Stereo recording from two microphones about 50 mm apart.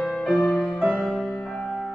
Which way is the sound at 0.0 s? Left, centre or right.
Centre.